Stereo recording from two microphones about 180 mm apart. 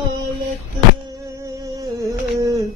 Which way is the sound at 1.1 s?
15° right (ahead or behind).